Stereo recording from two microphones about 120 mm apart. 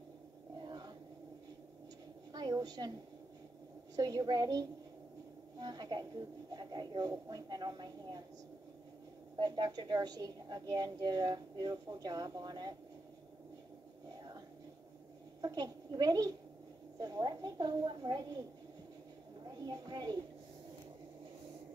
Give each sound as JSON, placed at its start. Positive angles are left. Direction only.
{"t": 0.7, "sound": "a sound", "side_deg": -35}
{"t": 2.3, "sound": "a sound", "side_deg": -35}
{"t": 3.9, "sound": "a woman's voice", "side_deg": -30}
{"t": 9.4, "sound": "a woman's voice", "side_deg": -35}
{"t": 15.4, "sound": "a woman's voice", "side_deg": -35}
{"t": 19.5, "sound": "a woman's voice", "side_deg": -35}